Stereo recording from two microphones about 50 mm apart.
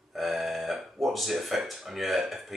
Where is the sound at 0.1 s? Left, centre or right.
Centre.